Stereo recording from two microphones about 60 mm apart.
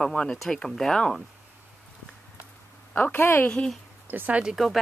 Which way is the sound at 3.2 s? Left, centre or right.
Left.